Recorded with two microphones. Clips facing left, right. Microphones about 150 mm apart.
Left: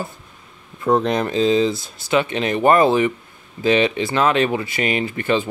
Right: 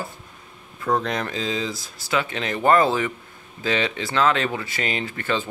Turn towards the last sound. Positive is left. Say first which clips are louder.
# left 6 dB
turn(degrees=15)  # may be behind; listen again after turning